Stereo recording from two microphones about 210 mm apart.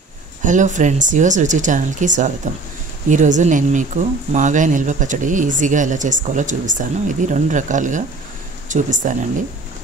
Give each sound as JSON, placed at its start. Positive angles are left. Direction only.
{"t": 0.4, "sound": "speech", "side_deg": -35}